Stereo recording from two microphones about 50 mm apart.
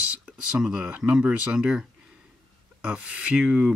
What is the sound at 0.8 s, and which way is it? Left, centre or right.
Speech, right.